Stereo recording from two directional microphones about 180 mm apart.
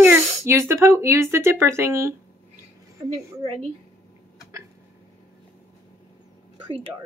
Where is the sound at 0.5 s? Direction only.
15° right (ahead or behind).